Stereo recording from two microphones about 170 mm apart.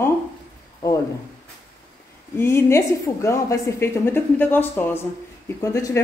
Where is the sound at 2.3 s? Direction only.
15° left (ahead or behind).